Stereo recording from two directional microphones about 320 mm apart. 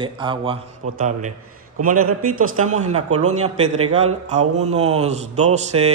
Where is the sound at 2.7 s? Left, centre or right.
Right.